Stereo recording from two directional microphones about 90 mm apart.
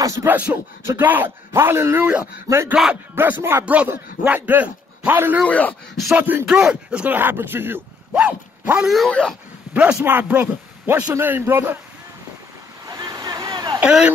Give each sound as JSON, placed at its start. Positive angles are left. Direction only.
{"t": 0.0, "sound": "a sound", "side_deg": -35}
{"t": 0.3, "sound": "speech", "side_deg": -20}
{"t": 2.7, "sound": "speech", "side_deg": -10}
{"t": 3.2, "sound": "speech", "side_deg": -25}
{"t": 3.6, "sound": "a man's voice", "side_deg": -15}
{"t": 5.4, "sound": "speech", "side_deg": 15}
{"t": 6.1, "sound": "speech", "side_deg": -20}
{"t": 6.4, "sound": "speech", "side_deg": -10}
{"t": 8.1, "sound": "dog", "side_deg": -15}
{"t": 8.8, "sound": "speech", "side_deg": 0}
{"t": 9.8, "sound": "speech", "side_deg": -10}
{"t": 12.8, "sound": "vehicle", "side_deg": -45}
{"t": 13.7, "sound": "speech", "side_deg": -10}